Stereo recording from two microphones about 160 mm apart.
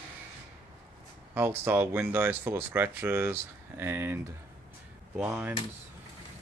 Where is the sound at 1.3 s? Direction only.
15° right (ahead or behind).